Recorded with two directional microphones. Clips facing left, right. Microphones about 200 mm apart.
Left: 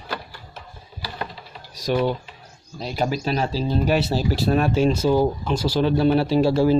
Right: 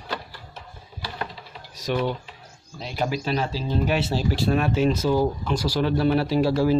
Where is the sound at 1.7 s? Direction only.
35° left (ahead or behind).